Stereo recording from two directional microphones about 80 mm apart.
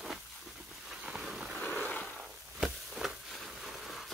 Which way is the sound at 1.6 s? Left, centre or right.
Centre.